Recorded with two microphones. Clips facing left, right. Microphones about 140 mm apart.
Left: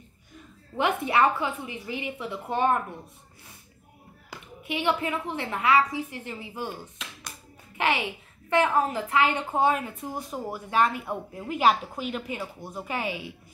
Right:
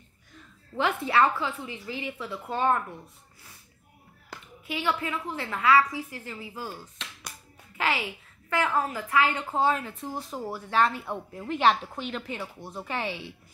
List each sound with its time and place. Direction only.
0.7 s a woman's voice: 20° left (ahead or behind)
4.3 s a sound: 5° left (ahead or behind)
4.6 s a woman's voice: 20° left (ahead or behind)